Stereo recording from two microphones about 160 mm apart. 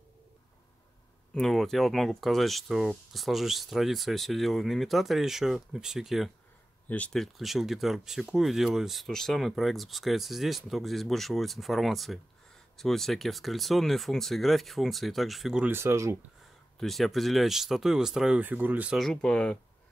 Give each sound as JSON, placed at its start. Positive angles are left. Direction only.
{"t": 1.3, "sound": "speech", "side_deg": 5}
{"t": 15.7, "sound": "speech", "side_deg": -15}
{"t": 16.8, "sound": "speech", "side_deg": 0}